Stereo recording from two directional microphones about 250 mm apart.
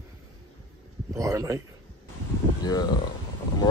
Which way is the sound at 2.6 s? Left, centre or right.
Centre.